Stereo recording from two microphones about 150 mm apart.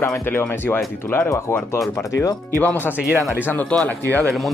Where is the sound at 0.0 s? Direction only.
15° left (ahead or behind).